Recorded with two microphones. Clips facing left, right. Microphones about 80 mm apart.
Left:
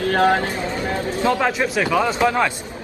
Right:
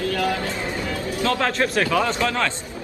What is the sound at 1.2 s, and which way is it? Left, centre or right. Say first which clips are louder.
A man's voice: left 2 dB; centre.